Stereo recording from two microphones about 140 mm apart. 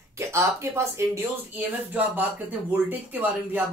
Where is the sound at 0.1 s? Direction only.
20° right (ahead or behind).